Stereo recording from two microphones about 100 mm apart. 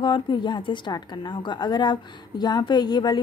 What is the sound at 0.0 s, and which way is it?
A woman's voice, 55° left (ahead or behind).